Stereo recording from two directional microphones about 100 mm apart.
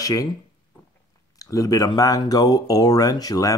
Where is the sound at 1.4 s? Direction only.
35° left (ahead or behind).